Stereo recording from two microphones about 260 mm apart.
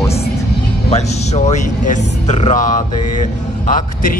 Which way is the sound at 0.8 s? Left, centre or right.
Left.